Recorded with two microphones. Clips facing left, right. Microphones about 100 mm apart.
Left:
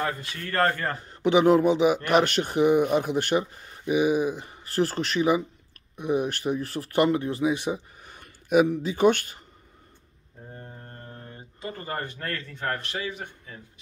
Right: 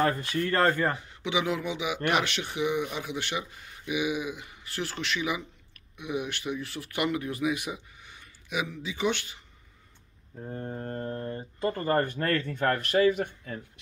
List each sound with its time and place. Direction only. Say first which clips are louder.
0.0 s speech: right 3 dB; 35° right (ahead or behind)
0.5 s speech: left 1 dB; 15° right (ahead or behind)
0.9 s a man's voice: left 9 dB; 45° left (ahead or behind)
8.0 s speech: left 4 dB; 50° left (ahead or behind)
10.7 s speech: right 10 dB; 50° right (ahead or behind)